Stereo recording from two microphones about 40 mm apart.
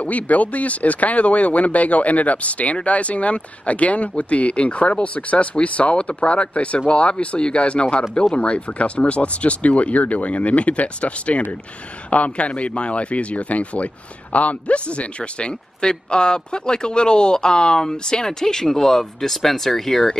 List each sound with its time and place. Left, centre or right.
0.0 s speech: left; by 20.2 s centre